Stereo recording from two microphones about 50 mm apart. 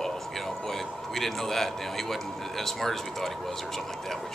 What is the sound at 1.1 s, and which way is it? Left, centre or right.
A man's voice, centre.